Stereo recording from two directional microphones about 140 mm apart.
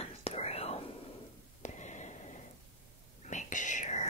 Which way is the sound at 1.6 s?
55° left (ahead or behind).